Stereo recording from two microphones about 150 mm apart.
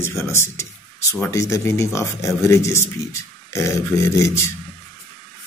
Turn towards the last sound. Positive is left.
turn(degrees=20)  # may be behind; listen again after turning